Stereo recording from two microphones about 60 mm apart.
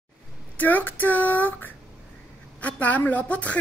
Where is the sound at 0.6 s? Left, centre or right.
Left.